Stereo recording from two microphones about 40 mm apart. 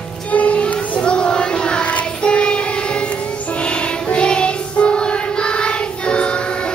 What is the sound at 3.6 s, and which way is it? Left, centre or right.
Music, left.